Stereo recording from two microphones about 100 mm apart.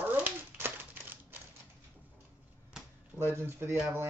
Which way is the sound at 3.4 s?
25° right (ahead or behind).